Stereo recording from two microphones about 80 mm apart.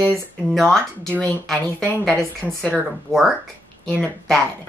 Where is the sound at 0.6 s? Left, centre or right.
Centre.